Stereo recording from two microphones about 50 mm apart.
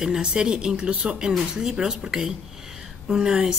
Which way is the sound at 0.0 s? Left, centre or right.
Centre.